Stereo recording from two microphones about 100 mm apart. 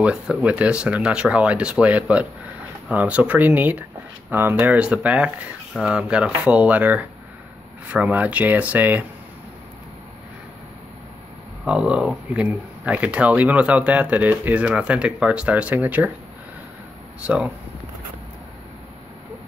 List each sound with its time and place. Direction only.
0.0 s speech: 10° right (ahead or behind)
11.6 s speech: 10° right (ahead or behind)
17.2 s speech: 15° right (ahead or behind)